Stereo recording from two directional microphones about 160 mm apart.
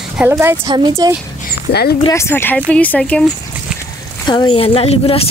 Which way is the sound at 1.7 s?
90° left.